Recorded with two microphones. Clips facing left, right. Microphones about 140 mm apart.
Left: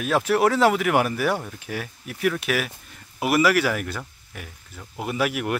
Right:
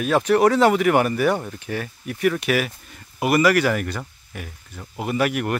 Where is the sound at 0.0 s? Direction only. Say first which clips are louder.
Right 3 dB; centre (ahead or behind).